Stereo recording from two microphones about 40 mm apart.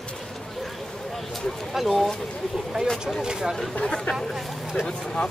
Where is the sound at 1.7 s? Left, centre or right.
Centre.